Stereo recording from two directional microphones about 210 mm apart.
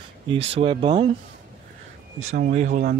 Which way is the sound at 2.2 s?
35° right (ahead or behind).